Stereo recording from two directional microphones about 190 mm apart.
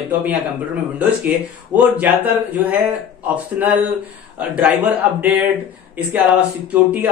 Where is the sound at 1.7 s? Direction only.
10° right (ahead or behind).